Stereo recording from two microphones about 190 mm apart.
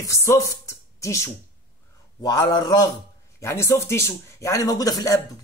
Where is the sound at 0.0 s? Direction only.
15° left (ahead or behind).